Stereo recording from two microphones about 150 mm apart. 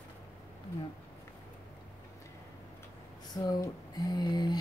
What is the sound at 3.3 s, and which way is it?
Speech, 25° left (ahead or behind).